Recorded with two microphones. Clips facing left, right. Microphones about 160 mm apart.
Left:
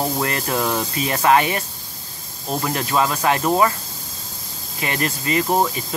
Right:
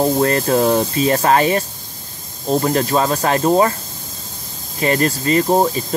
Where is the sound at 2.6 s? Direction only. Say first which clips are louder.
Right 1 dB; 35° right (ahead or behind).